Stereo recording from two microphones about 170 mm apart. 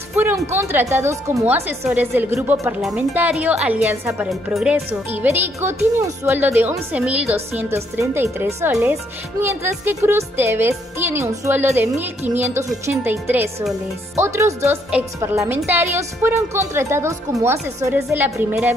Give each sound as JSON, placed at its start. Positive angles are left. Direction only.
{"t": 0.1, "sound": "music", "side_deg": -10}
{"t": 0.5, "sound": "speech", "side_deg": -15}
{"t": 5.1, "sound": "speech", "side_deg": -10}